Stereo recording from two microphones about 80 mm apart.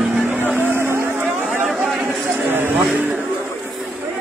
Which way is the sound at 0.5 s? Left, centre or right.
Right.